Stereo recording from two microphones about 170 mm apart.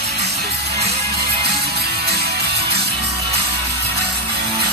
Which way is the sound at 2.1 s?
75° right (ahead or behind).